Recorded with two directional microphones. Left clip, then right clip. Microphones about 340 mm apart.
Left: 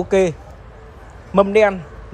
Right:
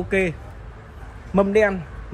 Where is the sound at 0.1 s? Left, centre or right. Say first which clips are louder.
Left 6 dB; left.